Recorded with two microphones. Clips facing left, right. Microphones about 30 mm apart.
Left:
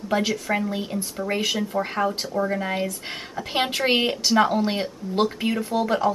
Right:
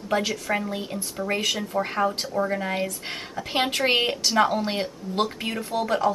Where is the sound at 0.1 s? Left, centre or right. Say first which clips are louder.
Left 1 dB; centre.